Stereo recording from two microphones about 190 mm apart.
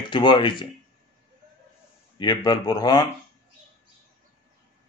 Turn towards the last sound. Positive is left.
turn(degrees=20)  # may be behind; listen again after turning